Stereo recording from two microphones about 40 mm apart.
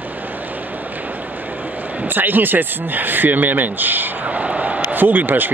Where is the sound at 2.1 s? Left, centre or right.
Right.